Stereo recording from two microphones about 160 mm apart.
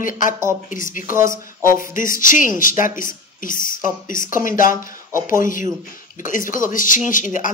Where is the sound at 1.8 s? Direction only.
60° left (ahead or behind).